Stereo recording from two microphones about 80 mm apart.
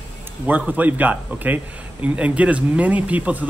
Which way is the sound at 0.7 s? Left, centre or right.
Right.